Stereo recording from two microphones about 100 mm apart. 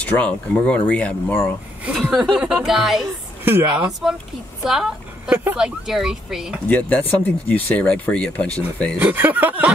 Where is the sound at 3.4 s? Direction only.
25° right (ahead or behind).